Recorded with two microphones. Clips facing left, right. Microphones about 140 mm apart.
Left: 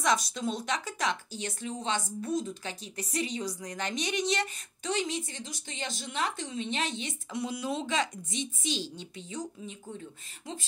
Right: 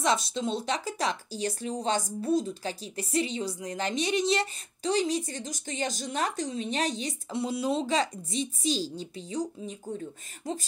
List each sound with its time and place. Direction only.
0.0 s a woman's voice: 30° right (ahead or behind)